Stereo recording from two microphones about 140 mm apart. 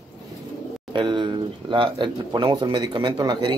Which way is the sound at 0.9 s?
35° right (ahead or behind).